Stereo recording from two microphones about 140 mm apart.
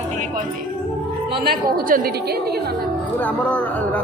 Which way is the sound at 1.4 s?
90° right.